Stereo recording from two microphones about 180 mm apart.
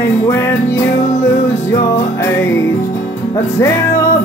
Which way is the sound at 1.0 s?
40° left (ahead or behind).